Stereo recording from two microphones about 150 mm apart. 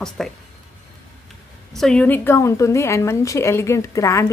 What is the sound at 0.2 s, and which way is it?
Speech, 5° left (ahead or behind).